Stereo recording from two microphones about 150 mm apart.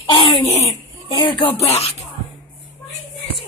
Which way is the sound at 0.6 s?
20° left (ahead or behind).